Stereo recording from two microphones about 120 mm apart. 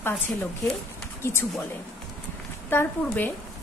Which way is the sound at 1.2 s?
20° left (ahead or behind).